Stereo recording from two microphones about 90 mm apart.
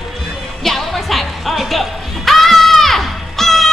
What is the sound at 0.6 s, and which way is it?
Music, centre (ahead or behind).